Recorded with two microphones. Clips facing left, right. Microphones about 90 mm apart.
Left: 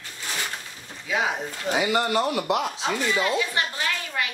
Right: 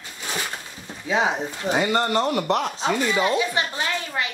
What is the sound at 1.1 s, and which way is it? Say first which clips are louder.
Speech: right 4 dB; 25° right (ahead or behind).